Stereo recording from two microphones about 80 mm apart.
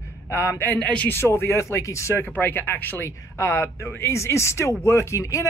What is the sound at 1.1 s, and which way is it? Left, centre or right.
A man's voice, left.